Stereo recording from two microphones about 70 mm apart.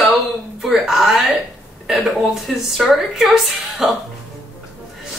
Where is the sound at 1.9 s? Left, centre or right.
Centre.